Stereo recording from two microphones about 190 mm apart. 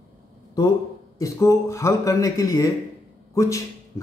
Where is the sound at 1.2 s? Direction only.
15° left (ahead or behind).